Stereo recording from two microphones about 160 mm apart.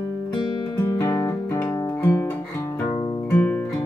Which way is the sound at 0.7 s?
20° left (ahead or behind).